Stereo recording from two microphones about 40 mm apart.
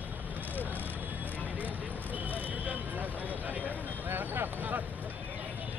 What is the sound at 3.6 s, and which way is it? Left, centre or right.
Vehicle, right.